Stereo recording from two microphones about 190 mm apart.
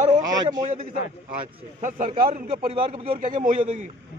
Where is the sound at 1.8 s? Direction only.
40° right (ahead or behind).